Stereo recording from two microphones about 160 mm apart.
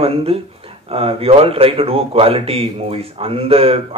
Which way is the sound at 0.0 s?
35° right (ahead or behind).